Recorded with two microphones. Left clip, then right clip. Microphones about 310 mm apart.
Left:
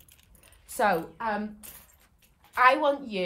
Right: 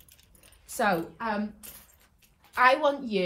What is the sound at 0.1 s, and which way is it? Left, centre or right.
Keys jangling, centre.